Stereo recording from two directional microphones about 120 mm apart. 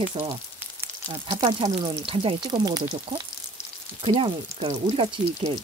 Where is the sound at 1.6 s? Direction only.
45° right (ahead or behind).